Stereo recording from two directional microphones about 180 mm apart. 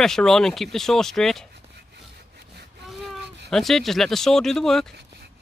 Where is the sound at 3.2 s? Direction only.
70° right (ahead or behind).